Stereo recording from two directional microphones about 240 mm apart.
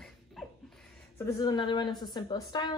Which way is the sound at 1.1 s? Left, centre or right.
Centre.